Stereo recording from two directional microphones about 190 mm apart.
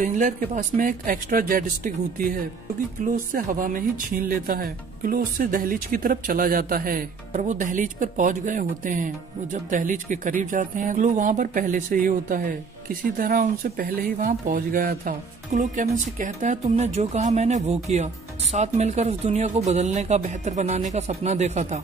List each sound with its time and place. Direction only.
0.0 s speech: 45° right (ahead or behind)